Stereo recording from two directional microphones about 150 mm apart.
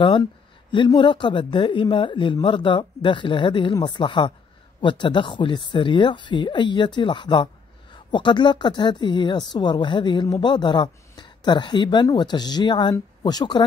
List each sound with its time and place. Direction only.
0.0 s a woman's voice: 30° left (ahead or behind)